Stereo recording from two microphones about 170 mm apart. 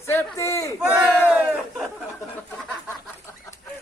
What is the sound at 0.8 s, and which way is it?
Speech, 5° right (ahead or behind).